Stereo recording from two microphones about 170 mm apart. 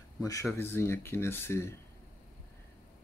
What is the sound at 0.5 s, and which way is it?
Speech, 15° left (ahead or behind).